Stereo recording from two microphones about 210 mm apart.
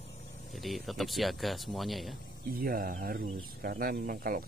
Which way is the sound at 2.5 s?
40° right (ahead or behind).